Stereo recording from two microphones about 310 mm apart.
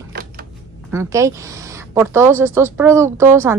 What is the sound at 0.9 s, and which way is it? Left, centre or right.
Speech, centre.